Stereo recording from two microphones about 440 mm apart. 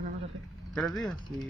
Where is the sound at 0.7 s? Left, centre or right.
Centre.